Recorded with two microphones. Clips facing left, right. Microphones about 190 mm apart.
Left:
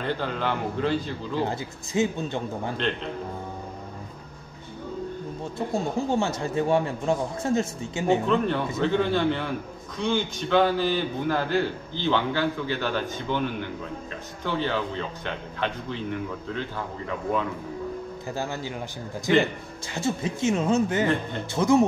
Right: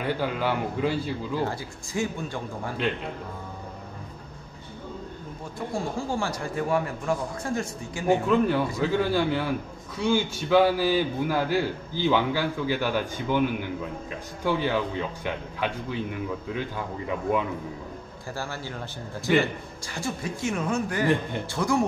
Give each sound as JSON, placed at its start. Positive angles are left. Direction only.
{"t": 0.0, "sound": "a man's voice", "side_deg": -10}
{"t": 1.4, "sound": "a man's voice", "side_deg": 20}
{"t": 5.4, "sound": "a man's voice", "side_deg": 25}
{"t": 8.3, "sound": "a man's voice", "side_deg": -10}
{"t": 18.3, "sound": "a man's voice", "side_deg": 20}
{"t": 19.9, "sound": "a man's voice", "side_deg": 25}